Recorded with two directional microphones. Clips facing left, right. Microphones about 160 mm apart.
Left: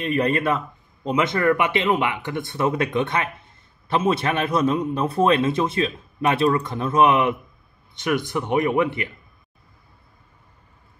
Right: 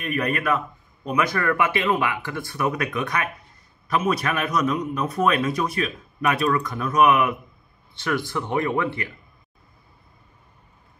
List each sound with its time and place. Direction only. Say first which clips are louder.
0.0 s a man's voice: left 4 dB; 30° left (ahead or behind)